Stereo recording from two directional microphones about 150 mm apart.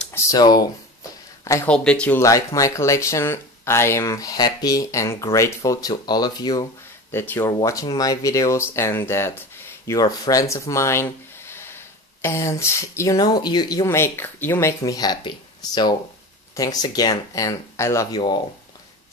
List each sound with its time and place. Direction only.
0.3 s speech: 25° left (ahead or behind)
1.4 s a sound: 20° left (ahead or behind)
1.7 s speech: 5° left (ahead or behind)
2.1 s speech: 20° left (ahead or behind)
13.8 s speech: 15° left (ahead or behind)